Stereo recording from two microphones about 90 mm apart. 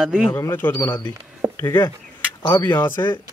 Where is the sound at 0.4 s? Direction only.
25° left (ahead or behind).